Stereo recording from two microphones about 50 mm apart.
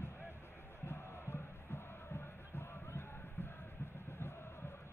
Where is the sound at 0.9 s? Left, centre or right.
Left.